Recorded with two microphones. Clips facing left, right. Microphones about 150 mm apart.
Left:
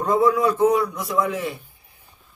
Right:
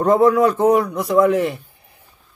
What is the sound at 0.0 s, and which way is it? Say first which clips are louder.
Speech: right 5 dB; 55° right (ahead or behind).